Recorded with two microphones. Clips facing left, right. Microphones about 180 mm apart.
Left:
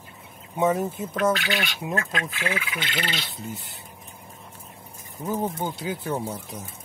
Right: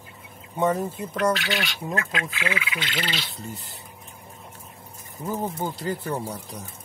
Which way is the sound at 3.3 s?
Centre (ahead or behind).